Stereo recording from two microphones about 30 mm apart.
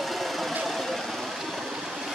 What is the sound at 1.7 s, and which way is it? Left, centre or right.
Stream, centre.